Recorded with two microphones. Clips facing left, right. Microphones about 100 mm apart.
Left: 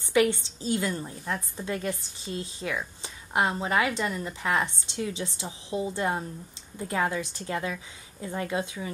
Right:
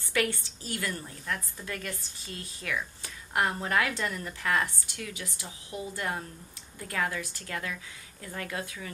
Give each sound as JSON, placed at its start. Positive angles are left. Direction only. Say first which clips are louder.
{"t": 0.1, "sound": "a woman's voice", "louder": "left 7 dB", "side_deg": 20}